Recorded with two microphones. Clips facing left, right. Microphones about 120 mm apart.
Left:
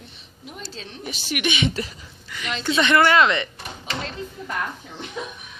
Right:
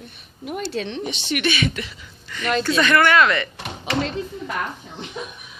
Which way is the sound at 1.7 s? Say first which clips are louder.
Left 2 dB; 35° left (ahead or behind).